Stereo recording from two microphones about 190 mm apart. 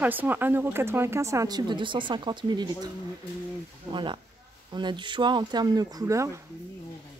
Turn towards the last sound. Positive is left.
turn(degrees=-15)  # may be behind; listen again after turning